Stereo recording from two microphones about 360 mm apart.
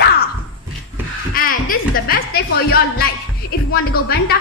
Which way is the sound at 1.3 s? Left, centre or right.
Left.